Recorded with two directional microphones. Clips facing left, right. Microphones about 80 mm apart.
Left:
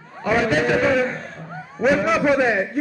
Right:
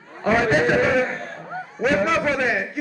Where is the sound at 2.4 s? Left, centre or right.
Left.